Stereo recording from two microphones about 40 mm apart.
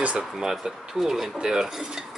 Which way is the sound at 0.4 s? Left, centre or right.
Centre.